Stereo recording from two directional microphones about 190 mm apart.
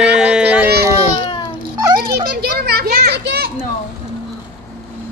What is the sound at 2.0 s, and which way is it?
Children playing, 55° right (ahead or behind).